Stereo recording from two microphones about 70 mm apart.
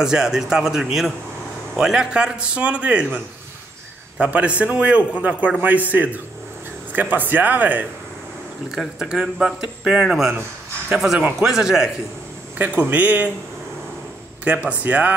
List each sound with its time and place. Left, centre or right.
0.0 s speech: centre
4.2 s a man's voice: centre
8.7 s speech: centre
12.5 s a man's voice: right
14.4 s a man's voice: right